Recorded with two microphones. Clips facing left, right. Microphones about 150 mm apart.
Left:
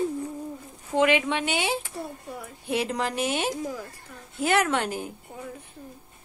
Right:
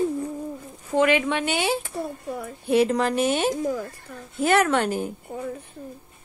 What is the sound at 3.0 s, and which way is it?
Speech, 50° right (ahead or behind).